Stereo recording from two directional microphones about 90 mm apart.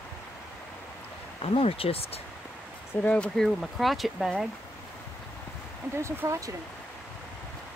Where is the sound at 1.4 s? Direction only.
90° left.